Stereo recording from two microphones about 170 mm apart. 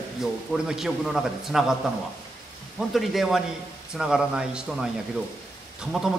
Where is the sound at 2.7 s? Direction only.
Centre (ahead or behind).